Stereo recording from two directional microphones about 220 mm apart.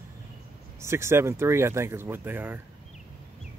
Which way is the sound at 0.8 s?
10° right (ahead or behind).